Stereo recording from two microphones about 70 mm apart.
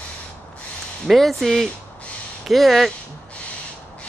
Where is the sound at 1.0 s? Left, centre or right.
Centre.